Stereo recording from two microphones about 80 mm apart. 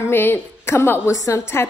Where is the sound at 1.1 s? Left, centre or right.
Left.